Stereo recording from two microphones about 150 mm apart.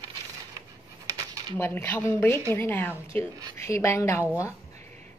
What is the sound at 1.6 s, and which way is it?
A woman's voice, 15° left (ahead or behind).